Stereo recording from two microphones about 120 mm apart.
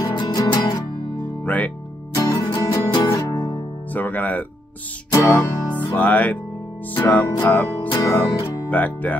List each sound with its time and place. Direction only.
0.0 s music: 35° left (ahead or behind)
1.4 s music: 15° left (ahead or behind)
2.1 s music: 30° left (ahead or behind)
3.9 s music: 15° left (ahead or behind)
7.9 s music: 30° left (ahead or behind)
8.6 s music: 15° left (ahead or behind)